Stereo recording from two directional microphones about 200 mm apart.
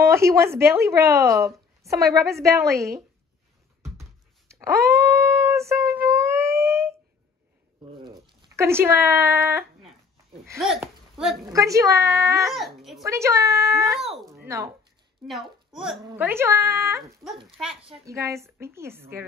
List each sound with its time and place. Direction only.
0.0 s speech: 15° right (ahead or behind)
4.5 s a sound: 15° right (ahead or behind)
8.0 s cat: 20° right (ahead or behind)
10.6 s a sound: centre (ahead or behind)
11.4 s speech: 15° right (ahead or behind)
12.4 s speech: centre (ahead or behind)
13.0 s speech: 15° right (ahead or behind)
13.7 s a child's voice: centre (ahead or behind)
16.2 s speech: 10° right (ahead or behind)
18.0 s speech: 15° right (ahead or behind)